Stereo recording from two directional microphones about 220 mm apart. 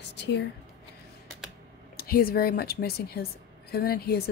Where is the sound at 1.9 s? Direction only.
40° left (ahead or behind).